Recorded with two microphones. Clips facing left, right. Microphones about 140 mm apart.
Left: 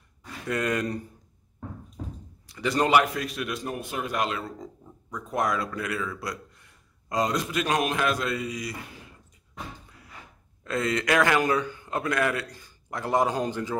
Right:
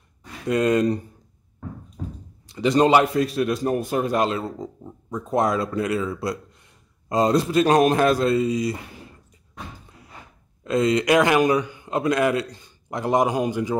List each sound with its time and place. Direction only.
0.2 s speech: 20° right (ahead or behind)
2.4 s a man's voice: 25° right (ahead or behind)
10.6 s a man's voice: 20° right (ahead or behind)